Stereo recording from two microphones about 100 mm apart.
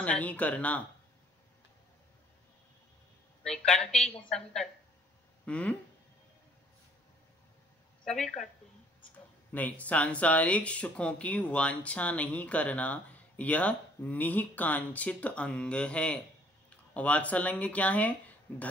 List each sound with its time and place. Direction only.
0.0 s speech: 15° left (ahead or behind)
3.4 s speech: 5° left (ahead or behind)
8.0 s speech: 5° left (ahead or behind)
9.5 s speech: 15° left (ahead or behind)